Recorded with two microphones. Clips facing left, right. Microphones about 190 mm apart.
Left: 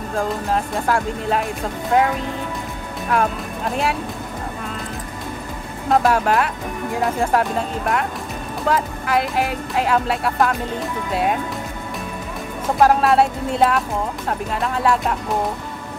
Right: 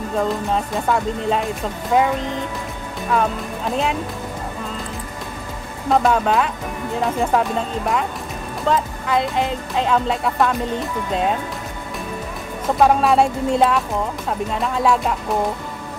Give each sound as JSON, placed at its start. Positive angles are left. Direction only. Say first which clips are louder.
{"t": 0.2, "sound": "speech", "louder": "even", "side_deg": 0}
{"t": 5.9, "sound": "speech", "louder": "even", "side_deg": 5}
{"t": 12.6, "sound": "speech", "louder": "even", "side_deg": 0}